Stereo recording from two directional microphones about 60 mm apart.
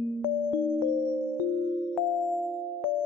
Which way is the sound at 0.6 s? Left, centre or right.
Left.